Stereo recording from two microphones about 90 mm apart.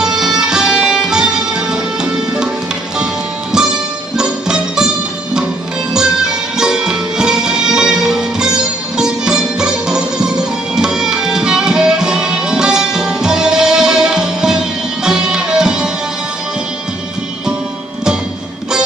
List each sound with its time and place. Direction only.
0.0 s music: 5° right (ahead or behind)
4.2 s music: 5° right (ahead or behind)
5.9 s music: 5° right (ahead or behind)
10.8 s tabla: 5° right (ahead or behind)
15.0 s music: 5° right (ahead or behind)